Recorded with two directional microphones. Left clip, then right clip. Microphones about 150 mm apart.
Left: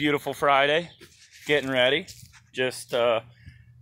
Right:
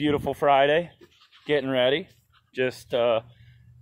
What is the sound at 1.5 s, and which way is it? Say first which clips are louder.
Speech: even; 20° right (ahead or behind).